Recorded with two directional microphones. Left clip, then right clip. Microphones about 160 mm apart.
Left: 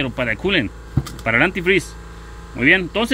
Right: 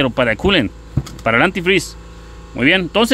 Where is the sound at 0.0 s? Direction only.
40° right (ahead or behind).